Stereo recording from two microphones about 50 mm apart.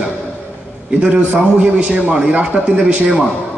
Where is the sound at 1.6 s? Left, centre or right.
Right.